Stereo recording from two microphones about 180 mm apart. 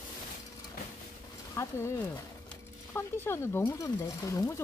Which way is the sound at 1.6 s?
15° left (ahead or behind).